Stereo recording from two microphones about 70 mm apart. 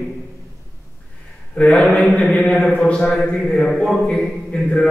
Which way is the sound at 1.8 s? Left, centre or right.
Centre.